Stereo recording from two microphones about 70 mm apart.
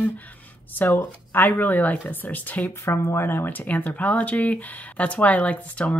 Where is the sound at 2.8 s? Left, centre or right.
Left.